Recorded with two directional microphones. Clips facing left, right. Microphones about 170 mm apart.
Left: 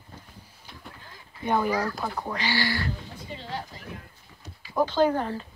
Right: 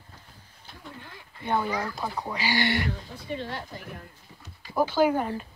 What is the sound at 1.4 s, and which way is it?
Speech, 15° left (ahead or behind).